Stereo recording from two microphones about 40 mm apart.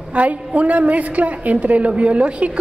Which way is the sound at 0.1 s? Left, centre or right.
Right.